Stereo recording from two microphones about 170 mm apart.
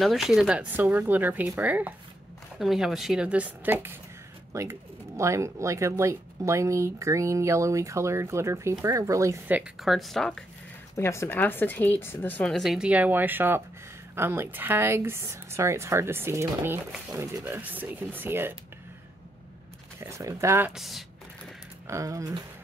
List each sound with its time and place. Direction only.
0.0 s a woman's voice: centre (ahead or behind); by 9.6 s 20° right (ahead or behind)
9.6 s a woman's voice: centre (ahead or behind)
11.0 s speech: 15° left (ahead or behind); by 18.5 s 10° right (ahead or behind)
20.0 s speech: 15° right (ahead or behind)
20.7 s a woman's voice: centre (ahead or behind)
21.8 s speech: 20° right (ahead or behind)